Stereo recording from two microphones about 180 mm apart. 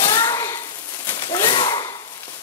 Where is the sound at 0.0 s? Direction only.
25° left (ahead or behind).